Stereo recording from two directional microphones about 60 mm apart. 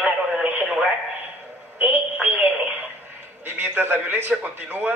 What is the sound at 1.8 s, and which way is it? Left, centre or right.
Speech, right.